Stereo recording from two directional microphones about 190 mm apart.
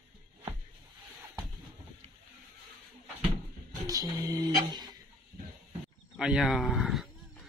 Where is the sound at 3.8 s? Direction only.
20° right (ahead or behind).